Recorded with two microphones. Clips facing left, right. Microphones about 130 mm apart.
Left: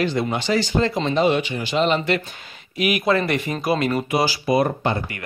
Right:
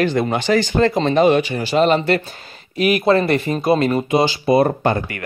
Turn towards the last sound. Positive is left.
turn(degrees=-55)  # may be behind; listen again after turning